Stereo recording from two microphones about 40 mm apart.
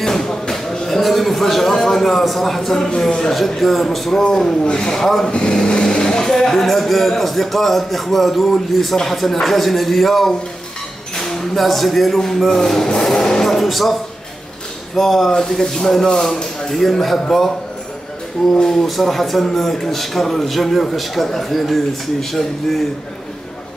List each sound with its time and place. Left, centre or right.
0.0 s speech: centre
5.3 s speech: left
13.0 s a sound: centre
15.0 s speech: centre
18.5 s speech: centre